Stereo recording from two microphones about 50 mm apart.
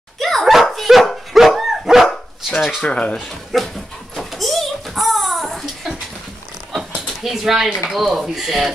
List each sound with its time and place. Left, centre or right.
0.2 s dog: centre
2.8 s speech: left
3.2 s dog: centre
6.7 s speech: centre